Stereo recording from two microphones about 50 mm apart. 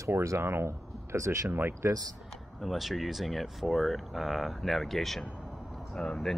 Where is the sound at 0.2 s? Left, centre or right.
Right.